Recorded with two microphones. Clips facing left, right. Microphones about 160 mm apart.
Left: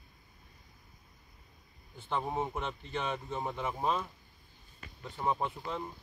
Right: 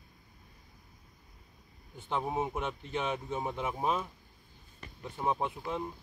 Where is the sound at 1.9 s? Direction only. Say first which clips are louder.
Right 1 dB; 15° right (ahead or behind).